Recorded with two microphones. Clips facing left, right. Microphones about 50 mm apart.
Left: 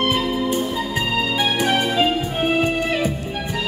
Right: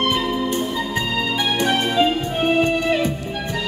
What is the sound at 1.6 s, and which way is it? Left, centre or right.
Music, centre.